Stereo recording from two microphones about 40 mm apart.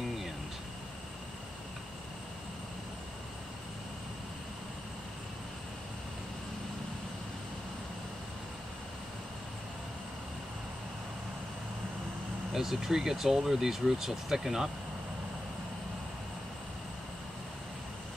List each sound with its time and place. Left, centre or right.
12.5 s speech: centre